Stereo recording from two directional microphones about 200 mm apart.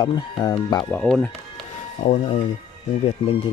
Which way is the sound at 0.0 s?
20° left (ahead or behind).